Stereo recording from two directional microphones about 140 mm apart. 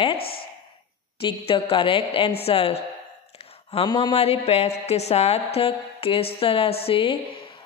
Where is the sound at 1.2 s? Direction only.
40° left (ahead or behind).